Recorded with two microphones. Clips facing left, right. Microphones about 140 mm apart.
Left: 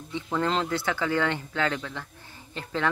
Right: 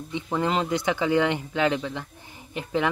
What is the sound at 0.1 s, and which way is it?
Speech, 15° right (ahead or behind).